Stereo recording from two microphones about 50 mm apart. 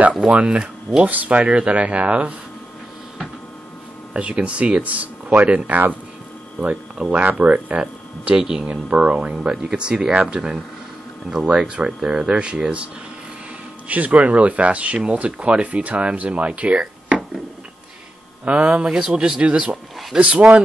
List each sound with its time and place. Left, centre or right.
0.2 s speech: right
4.1 s speech: right
5.7 s speech: right
8.4 s speech: centre
8.9 s speech: right
18.4 s speech: right